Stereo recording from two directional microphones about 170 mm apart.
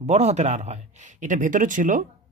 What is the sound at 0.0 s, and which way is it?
Speech, 40° right (ahead or behind).